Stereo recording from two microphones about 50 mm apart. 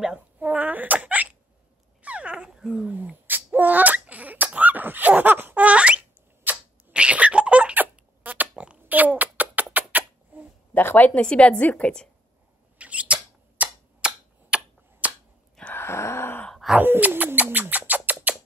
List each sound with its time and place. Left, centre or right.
0.4 s hiccup: right
2.0 s dog: right
2.9 s sneeze: right
4.6 s a sound: right
8.2 s pig: right
8.8 s rodents: right
10.7 s a sound: left
11.1 s a woman's voice: left
12.7 s a sound: right
15.7 s groan: left
16.6 s bird: centre
17.4 s bird: right